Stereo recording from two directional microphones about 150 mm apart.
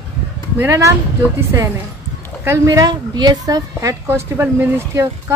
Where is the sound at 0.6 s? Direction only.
20° right (ahead or behind).